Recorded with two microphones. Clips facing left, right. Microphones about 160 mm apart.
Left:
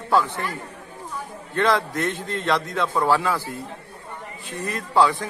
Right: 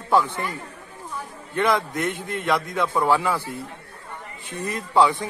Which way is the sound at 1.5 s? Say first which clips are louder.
Left 1 dB; 15° right (ahead or behind).